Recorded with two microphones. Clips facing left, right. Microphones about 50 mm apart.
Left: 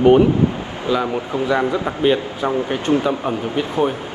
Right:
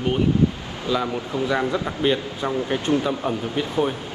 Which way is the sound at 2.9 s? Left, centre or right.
Left.